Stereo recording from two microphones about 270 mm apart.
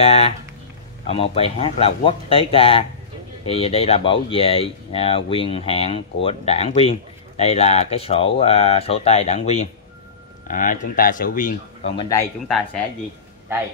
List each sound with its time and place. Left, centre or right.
0.0 s a man's voice: left
11.9 s speech: centre